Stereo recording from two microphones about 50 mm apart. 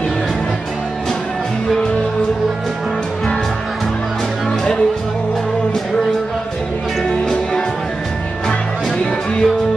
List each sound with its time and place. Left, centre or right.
7.1 s music: centre